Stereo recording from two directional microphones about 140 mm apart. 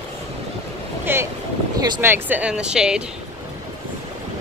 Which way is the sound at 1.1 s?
15° right (ahead or behind).